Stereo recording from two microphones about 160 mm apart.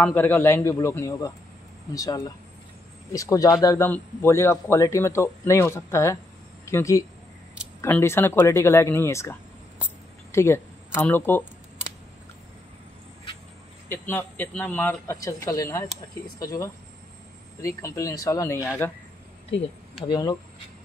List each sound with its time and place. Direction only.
0.0 s speech: 10° left (ahead or behind)
13.8 s speech: 10° left (ahead or behind)
20.1 s speech: 25° left (ahead or behind)